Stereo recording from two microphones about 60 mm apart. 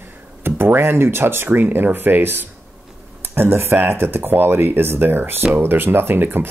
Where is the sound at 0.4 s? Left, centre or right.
Right.